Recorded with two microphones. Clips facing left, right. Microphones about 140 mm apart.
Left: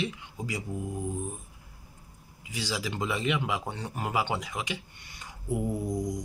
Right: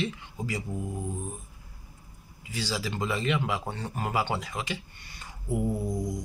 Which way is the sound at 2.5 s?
15° left (ahead or behind).